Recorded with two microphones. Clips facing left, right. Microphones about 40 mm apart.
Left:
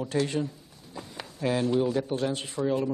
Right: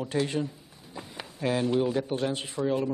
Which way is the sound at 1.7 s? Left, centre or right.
Centre.